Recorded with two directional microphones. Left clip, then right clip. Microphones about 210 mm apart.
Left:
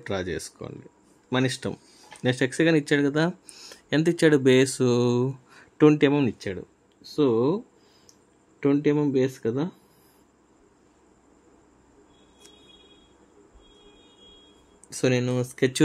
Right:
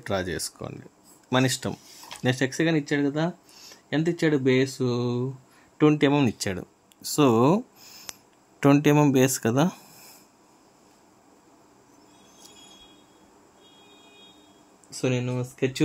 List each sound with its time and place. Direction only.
0.0 s speech: 5° right (ahead or behind); by 5.3 s 25° left (ahead or behind)
5.8 s speech: 5° left (ahead or behind); by 6.6 s 10° right (ahead or behind)
7.2 s speech: 25° right (ahead or behind)
14.9 s speech: 20° left (ahead or behind)